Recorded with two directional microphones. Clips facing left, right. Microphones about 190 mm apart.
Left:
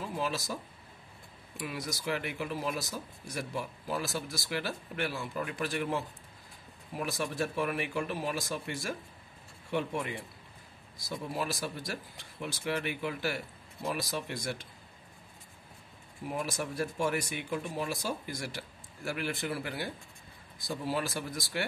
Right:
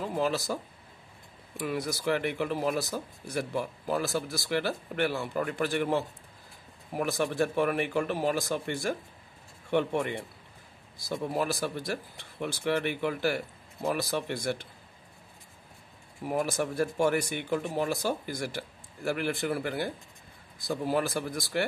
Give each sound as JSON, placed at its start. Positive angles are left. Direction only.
{"t": 0.0, "sound": "speech", "side_deg": -55}
{"t": 1.6, "sound": "speech", "side_deg": -55}
{"t": 16.3, "sound": "a man's voice", "side_deg": -55}